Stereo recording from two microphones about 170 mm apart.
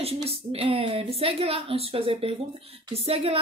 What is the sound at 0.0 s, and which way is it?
A woman's voice, 35° right (ahead or behind).